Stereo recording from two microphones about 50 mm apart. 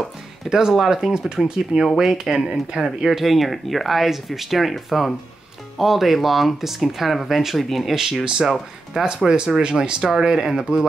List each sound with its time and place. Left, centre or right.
0.5 s speech: centre